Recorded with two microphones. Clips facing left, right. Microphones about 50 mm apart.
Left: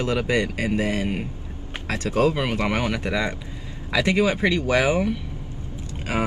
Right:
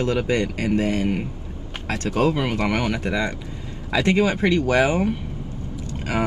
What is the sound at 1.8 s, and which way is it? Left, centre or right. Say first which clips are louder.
Speech: even; right.